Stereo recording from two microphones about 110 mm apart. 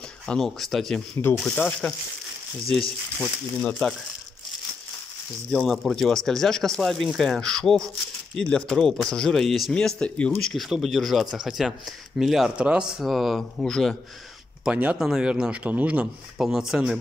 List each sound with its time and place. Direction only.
0.3 s speech: 5° left (ahead or behind)
3.6 s speech: 10° left (ahead or behind)
5.7 s speech: centre (ahead or behind)
14.6 s a man's voice: 10° right (ahead or behind)